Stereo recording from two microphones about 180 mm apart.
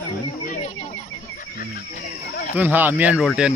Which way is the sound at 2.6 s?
10° right (ahead or behind).